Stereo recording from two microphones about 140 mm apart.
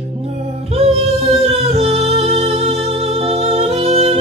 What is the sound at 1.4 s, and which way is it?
Music, 45° right (ahead or behind).